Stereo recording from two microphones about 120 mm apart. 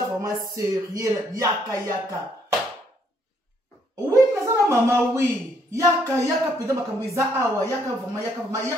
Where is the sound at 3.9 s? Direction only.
25° right (ahead or behind).